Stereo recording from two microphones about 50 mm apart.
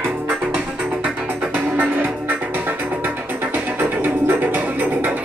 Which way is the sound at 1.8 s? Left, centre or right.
Right.